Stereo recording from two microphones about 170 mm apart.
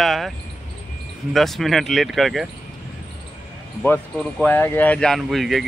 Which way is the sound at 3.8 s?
10° left (ahead or behind).